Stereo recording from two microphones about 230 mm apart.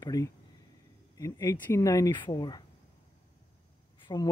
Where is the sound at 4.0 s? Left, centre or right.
Centre.